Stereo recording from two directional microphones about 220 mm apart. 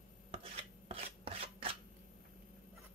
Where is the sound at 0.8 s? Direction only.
25° right (ahead or behind).